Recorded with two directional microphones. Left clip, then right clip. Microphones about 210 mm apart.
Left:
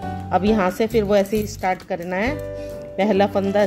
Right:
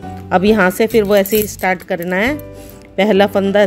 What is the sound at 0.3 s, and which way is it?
Speech, 40° right (ahead or behind).